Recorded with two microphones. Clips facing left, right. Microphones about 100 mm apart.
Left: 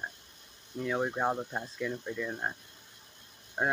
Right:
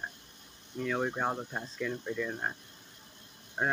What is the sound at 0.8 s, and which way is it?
Speech, 10° left (ahead or behind).